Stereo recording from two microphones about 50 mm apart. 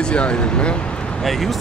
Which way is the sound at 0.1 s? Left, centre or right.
Left.